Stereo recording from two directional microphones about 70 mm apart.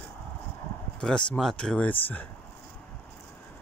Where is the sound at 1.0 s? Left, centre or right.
Centre.